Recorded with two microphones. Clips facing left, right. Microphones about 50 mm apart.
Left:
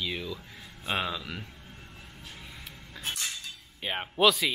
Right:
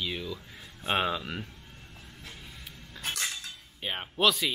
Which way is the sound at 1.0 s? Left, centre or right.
Centre.